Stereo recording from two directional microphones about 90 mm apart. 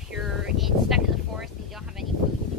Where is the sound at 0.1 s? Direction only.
5° right (ahead or behind).